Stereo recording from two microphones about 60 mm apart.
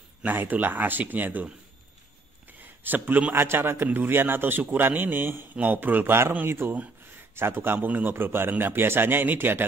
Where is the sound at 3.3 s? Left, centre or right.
Right.